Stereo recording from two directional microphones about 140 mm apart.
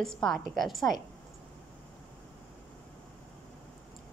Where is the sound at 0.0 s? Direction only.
5° left (ahead or behind).